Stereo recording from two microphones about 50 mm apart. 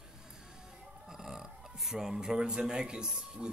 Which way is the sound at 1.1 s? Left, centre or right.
Centre.